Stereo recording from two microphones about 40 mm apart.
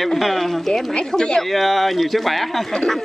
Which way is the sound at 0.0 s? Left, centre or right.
Centre.